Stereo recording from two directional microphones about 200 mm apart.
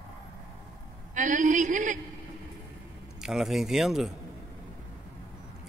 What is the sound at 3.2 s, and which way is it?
Speech, centre (ahead or behind).